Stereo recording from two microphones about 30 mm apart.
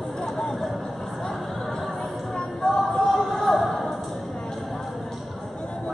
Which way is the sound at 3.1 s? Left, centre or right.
Centre.